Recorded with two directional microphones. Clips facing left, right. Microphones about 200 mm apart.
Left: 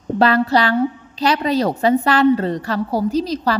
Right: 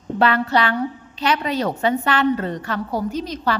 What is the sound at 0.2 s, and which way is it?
A woman's voice, 35° left (ahead or behind).